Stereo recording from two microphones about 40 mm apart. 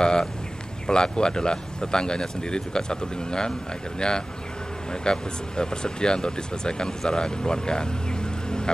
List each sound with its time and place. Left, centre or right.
0.0 s a sound: centre
0.8 s speech: centre
5.0 s speech: centre